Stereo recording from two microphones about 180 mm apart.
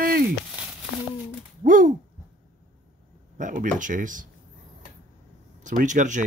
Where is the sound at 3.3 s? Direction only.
45° right (ahead or behind).